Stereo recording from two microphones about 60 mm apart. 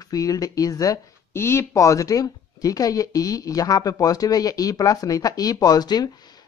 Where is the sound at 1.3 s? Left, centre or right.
Left.